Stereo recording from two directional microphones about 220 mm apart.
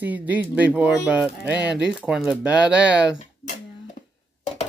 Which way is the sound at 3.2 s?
35° left (ahead or behind).